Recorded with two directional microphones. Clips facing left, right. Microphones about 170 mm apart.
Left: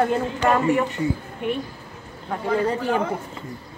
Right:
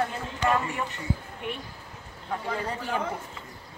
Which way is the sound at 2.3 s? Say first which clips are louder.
Left 9 dB; 85° left.